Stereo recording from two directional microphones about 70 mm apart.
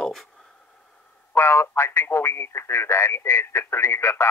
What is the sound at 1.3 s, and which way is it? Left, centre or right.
Speech, left.